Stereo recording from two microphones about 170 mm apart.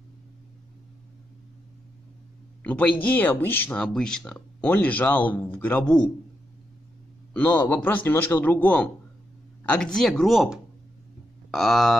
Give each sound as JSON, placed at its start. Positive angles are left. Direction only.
{"t": 2.6, "sound": "speech", "side_deg": 10}
{"t": 7.3, "sound": "speech", "side_deg": 10}